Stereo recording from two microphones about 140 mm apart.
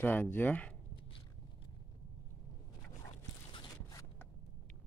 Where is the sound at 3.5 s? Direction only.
30° left (ahead or behind).